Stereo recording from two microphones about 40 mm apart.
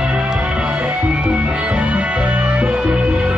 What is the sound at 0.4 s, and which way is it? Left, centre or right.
Music, right.